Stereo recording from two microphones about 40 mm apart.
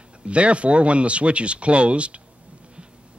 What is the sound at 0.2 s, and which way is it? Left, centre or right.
Speech, right.